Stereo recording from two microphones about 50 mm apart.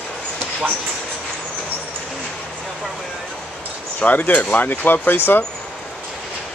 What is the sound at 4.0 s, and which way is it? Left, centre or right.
Speech, left.